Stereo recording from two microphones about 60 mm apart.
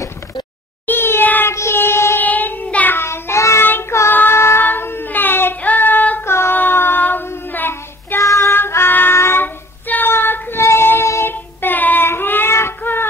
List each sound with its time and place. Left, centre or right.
0.8 s meow: left
1.5 s child singing: left
2.2 s child singing: left
3.0 s child singing: left
4.1 s child singing: left
4.4 s a sound: left
4.6 s child singing: left
6.2 s a sound: left
6.5 s child singing: left
8.2 s child singing: left
8.5 s music: left
9.8 s child singing: left
10.6 s child singing: left
11.3 s child singing: left